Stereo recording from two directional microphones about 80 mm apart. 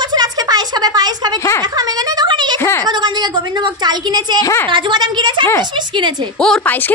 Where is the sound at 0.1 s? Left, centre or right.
Right.